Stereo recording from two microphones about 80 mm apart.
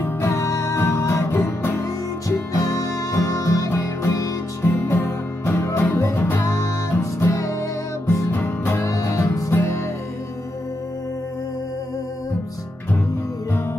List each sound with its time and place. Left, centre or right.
0.0 s music: left
2.2 s music: left
6.4 s music: left
8.3 s music: left